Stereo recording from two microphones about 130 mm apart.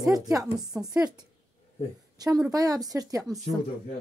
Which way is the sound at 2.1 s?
30° right (ahead or behind).